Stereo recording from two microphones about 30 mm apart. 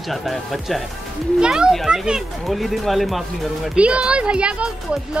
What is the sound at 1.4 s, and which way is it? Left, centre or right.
Speech, right.